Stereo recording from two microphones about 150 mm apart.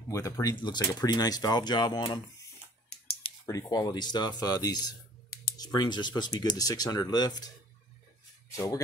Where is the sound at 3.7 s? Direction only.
25° left (ahead or behind).